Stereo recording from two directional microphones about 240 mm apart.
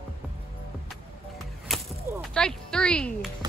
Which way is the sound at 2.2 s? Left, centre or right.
Centre.